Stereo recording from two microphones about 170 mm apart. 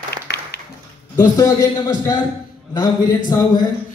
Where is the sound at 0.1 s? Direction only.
70° left (ahead or behind).